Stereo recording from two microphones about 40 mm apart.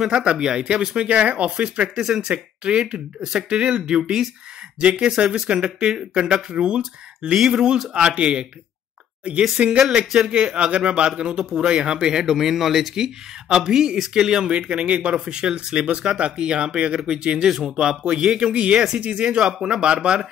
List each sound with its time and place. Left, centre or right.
0.0 s a man's voice: centre
9.6 s speech: right
9.9 s a man's voice: centre
14.5 s a man's voice: right
15.1 s a man's voice: centre
18.4 s a man's voice: right
19.2 s a man's voice: centre